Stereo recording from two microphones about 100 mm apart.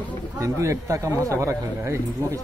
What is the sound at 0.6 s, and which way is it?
Speech, 30° right (ahead or behind).